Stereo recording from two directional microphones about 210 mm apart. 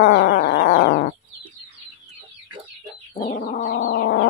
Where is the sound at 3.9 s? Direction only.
65° left (ahead or behind).